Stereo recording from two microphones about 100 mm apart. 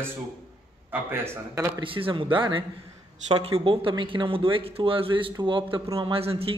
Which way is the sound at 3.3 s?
70° right (ahead or behind).